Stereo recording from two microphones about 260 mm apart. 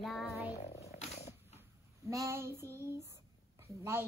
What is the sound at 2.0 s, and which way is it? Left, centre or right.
Speech, centre.